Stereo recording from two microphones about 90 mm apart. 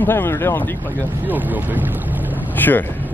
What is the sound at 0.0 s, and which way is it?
Speech, 25° left (ahead or behind).